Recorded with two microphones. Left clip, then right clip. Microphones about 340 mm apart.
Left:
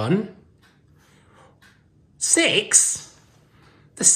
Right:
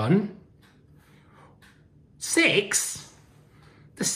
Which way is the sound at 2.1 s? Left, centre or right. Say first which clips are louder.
Left 2 dB; centre.